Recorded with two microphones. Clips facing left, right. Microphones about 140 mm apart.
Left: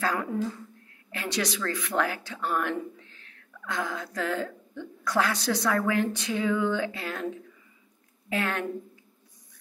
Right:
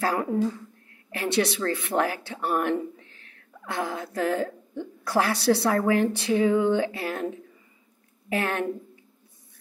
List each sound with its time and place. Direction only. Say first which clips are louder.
0.0 s speech: right 4 dB; 30° right (ahead or behind)